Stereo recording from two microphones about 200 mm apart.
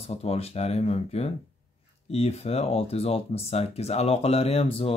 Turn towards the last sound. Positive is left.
turn(degrees=30)  # may be behind; listen again after turning